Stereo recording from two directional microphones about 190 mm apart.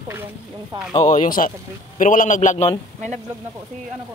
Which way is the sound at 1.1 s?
45° left (ahead or behind).